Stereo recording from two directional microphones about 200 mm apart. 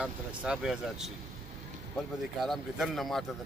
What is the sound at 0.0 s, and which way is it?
Speech, 5° right (ahead or behind).